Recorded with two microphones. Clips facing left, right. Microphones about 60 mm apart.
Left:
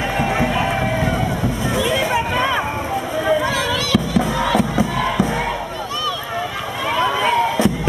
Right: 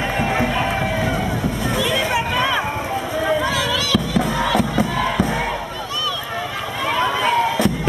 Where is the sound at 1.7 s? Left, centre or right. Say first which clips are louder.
Left 2 dB; centre.